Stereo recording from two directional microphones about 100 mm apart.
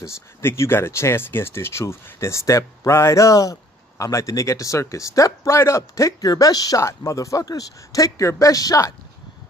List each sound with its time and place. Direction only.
0.0 s speech: 25° left (ahead or behind)